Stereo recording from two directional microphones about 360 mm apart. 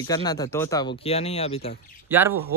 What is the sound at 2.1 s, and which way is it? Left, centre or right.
Speech, centre.